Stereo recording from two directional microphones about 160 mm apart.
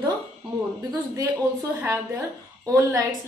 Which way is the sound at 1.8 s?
10° right (ahead or behind).